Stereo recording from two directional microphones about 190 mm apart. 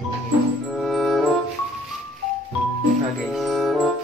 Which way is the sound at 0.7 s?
Centre (ahead or behind).